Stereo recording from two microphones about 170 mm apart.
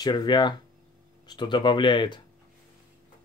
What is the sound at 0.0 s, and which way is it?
Speech, 25° left (ahead or behind).